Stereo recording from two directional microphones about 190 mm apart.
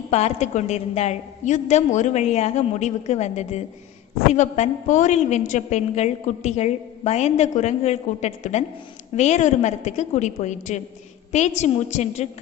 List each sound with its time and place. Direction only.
0.1 s a woman's voice: 35° left (ahead or behind)